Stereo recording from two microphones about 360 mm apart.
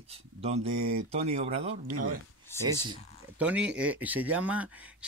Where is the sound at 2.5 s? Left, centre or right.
Centre.